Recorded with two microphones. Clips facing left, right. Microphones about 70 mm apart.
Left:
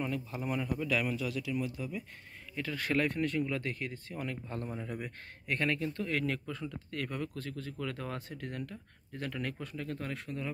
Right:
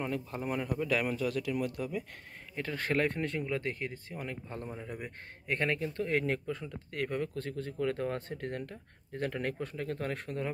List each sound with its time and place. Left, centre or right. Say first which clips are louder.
0.0 s speech: right 1 dB; right
2.5 s speech: right 1 dB; right